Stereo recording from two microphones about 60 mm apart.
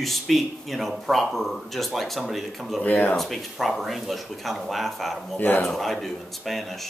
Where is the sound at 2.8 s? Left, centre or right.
Left.